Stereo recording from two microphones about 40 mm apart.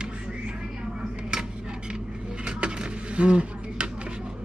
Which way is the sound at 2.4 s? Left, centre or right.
Right.